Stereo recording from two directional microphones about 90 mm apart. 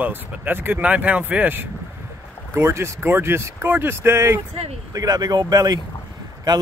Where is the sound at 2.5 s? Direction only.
30° right (ahead or behind).